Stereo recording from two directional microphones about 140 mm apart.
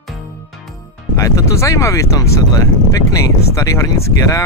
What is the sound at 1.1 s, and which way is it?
Speech, 25° left (ahead or behind).